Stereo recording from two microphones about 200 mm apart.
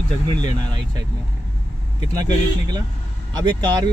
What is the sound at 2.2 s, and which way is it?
Speech, 20° right (ahead or behind).